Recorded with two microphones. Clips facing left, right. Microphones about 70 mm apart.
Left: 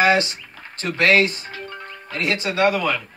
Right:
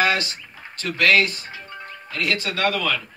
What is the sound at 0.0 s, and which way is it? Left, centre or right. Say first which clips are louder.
Speech: left 4 dB; left.